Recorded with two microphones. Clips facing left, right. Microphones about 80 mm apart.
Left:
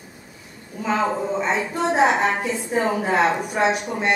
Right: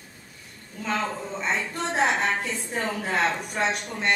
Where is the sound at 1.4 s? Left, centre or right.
Centre.